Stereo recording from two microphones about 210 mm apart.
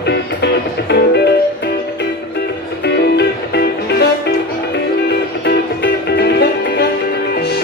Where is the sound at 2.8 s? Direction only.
55° left (ahead or behind).